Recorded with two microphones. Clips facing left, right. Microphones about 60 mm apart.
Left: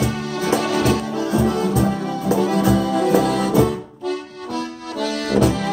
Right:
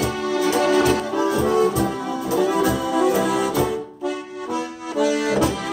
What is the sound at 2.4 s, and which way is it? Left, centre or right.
Accordion, centre.